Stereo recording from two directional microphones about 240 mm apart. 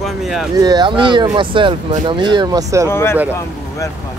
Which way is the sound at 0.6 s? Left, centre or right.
Centre.